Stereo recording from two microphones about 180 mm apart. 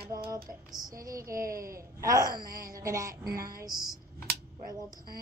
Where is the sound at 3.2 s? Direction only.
55° right (ahead or behind).